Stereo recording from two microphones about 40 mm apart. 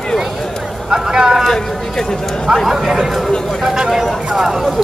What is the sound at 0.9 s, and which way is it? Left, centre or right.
Speech, centre.